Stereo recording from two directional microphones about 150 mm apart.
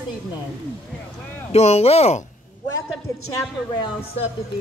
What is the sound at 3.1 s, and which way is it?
Speech, 20° left (ahead or behind).